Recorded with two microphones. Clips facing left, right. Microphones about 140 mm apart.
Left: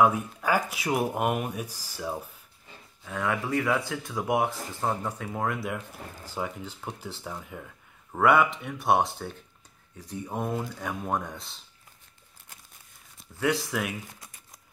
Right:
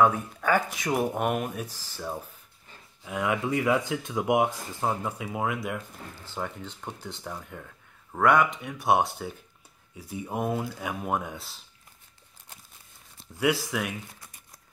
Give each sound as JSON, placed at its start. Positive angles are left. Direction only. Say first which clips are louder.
{"t": 0.0, "sound": "speech", "louder": "even", "side_deg": 10}
{"t": 3.0, "sound": "speech", "louder": "right 2 dB", "side_deg": -15}
{"t": 6.3, "sound": "speech", "louder": "left 1 dB", "side_deg": 10}
{"t": 13.4, "sound": "speech", "louder": "right 1 dB", "side_deg": -5}